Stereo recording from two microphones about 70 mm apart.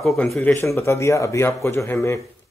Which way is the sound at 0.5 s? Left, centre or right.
Left.